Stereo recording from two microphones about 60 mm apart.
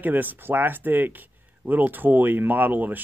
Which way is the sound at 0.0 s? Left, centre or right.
Right.